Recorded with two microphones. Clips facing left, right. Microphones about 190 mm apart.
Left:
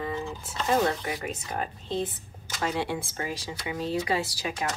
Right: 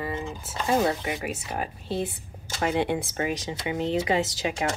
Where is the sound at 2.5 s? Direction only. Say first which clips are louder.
Right 4 dB; 20° right (ahead or behind).